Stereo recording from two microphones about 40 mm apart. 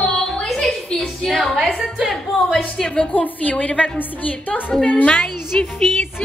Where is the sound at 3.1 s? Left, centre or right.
Left.